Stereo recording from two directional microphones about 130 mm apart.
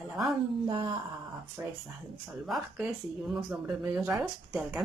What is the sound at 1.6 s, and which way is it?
Speech, 20° right (ahead or behind).